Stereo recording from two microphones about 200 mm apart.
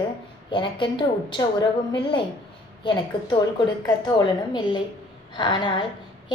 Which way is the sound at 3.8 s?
20° left (ahead or behind).